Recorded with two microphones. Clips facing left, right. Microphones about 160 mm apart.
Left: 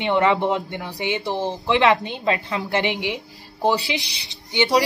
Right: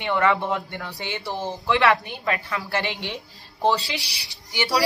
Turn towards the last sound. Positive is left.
turn(degrees=20)  # may be behind; listen again after turning